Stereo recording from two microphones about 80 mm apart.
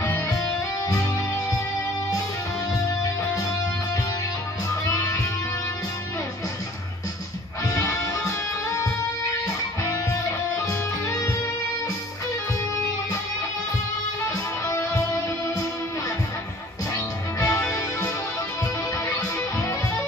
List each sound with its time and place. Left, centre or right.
4.8 s music: left
7.6 s music: left
10.7 s music: left
14.2 s music: left
16.9 s music: left
19.1 s music: left